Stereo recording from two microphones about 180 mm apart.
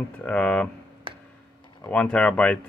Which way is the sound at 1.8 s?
5° left (ahead or behind).